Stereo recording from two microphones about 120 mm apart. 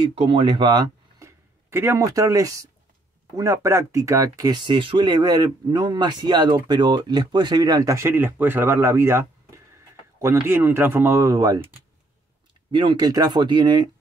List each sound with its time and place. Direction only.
0.1 s speech: 45° right (ahead or behind)
1.2 s speech: 20° right (ahead or behind)
12.7 s speech: 40° right (ahead or behind)